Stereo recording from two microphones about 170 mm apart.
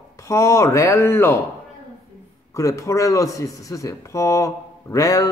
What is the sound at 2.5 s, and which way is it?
A man's voice, 20° left (ahead or behind).